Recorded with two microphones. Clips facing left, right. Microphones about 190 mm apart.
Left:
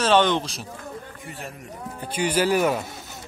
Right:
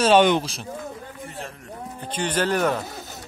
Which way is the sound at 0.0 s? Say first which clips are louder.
Right 3 dB; 15° right (ahead or behind).